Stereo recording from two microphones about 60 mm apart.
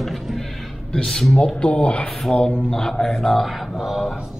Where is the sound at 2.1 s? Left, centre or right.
Centre.